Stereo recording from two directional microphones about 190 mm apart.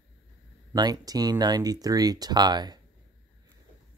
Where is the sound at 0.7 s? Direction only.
20° right (ahead or behind).